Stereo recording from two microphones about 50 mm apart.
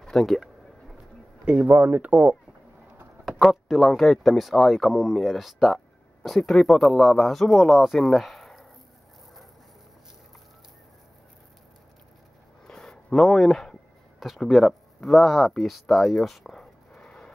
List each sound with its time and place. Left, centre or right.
0.0 s speech: centre
1.4 s speech: right
3.3 s speech: centre
12.6 s a sound: centre
14.5 s speech: centre
16.9 s a sound: centre